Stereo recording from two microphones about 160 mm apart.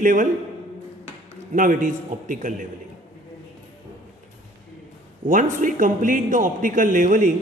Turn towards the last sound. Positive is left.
turn(degrees=-55)  # may be behind; listen again after turning